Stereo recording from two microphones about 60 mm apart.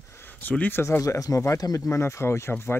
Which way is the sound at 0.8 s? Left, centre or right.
Left.